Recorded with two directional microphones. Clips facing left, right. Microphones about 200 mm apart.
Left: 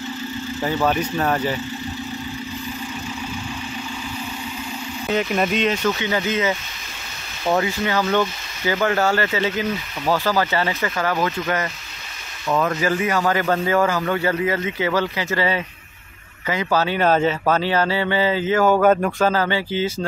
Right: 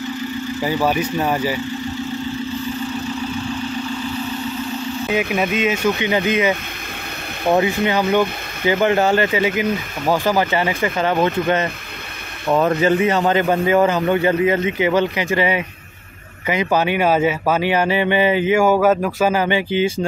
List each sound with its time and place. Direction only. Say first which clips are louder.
0.6 s speech: right 1 dB; 10° right (ahead or behind)
5.3 s a man's voice: right 1 dB; 5° right (ahead or behind)